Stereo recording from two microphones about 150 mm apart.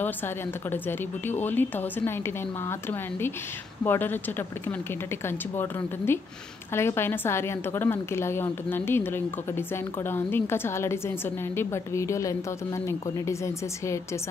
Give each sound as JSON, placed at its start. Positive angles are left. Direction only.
{"t": 0.7, "sound": "a woman's voice", "side_deg": 15}